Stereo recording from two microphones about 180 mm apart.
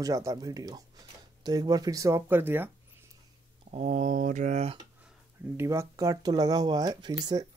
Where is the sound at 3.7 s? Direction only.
40° right (ahead or behind).